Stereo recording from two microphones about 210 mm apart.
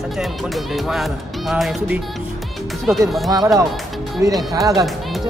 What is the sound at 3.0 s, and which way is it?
Speech, centre (ahead or behind).